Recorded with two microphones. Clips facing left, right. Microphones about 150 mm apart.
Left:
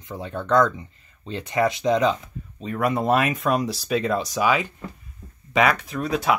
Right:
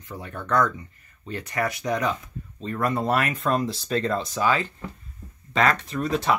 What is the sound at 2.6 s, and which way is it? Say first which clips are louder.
Speech: left 2 dB; 10° left (ahead or behind).